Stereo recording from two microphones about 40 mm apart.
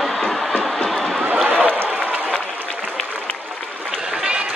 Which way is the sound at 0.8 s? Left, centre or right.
Centre.